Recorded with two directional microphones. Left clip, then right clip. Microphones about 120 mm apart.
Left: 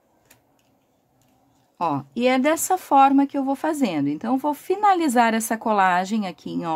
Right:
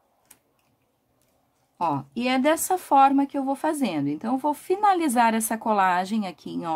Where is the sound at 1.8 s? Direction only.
15° left (ahead or behind).